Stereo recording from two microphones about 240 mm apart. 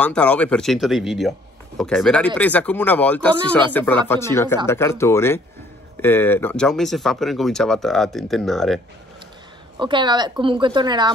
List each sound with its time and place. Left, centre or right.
0.0 s speech: centre
9.8 s a woman's voice: centre